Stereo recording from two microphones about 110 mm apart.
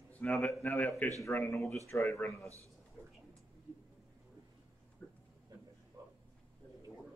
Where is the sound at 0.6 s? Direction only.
15° left (ahead or behind).